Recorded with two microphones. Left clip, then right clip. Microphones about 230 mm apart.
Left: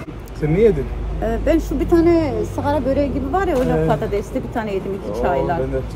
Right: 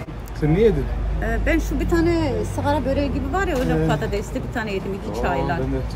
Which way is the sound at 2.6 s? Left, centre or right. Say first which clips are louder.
Left 3 dB; centre.